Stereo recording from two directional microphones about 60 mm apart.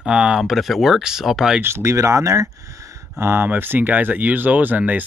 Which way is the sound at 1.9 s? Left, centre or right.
Right.